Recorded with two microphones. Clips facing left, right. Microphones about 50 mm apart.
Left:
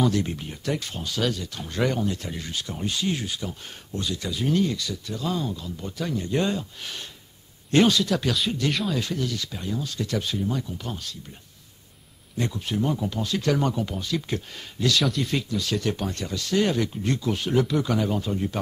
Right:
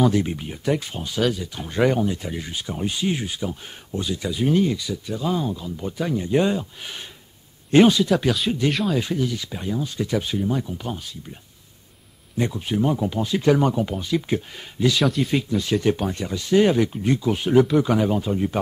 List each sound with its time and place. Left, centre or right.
0.0 s speech: centre
12.4 s speech: centre